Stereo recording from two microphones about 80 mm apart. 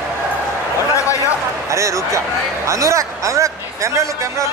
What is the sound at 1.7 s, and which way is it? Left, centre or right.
A man's voice, right.